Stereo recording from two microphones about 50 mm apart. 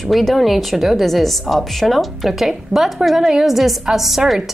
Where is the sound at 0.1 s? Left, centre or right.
Centre.